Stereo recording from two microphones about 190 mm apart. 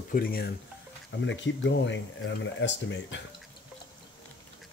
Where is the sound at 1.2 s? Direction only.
70° left (ahead or behind).